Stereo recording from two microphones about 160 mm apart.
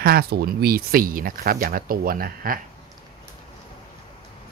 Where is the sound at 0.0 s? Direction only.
75° right (ahead or behind).